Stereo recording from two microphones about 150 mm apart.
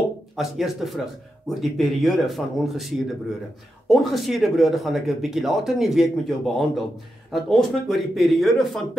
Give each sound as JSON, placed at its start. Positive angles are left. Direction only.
{"t": 0.4, "sound": "speech", "side_deg": 0}